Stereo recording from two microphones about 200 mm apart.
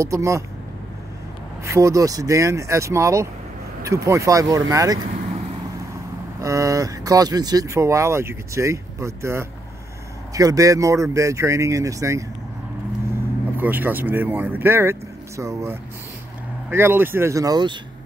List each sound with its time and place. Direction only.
0.0 s speech: 15° right (ahead or behind)
1.6 s speech: 15° right (ahead or behind)
6.4 s speech: 15° right (ahead or behind)
13.6 s speech: 10° right (ahead or behind)